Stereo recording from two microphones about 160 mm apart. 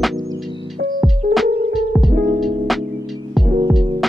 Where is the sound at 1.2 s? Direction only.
60° right (ahead or behind).